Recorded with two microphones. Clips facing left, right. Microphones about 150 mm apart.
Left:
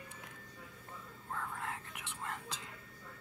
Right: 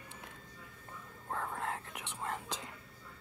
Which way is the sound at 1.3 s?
40° right (ahead or behind).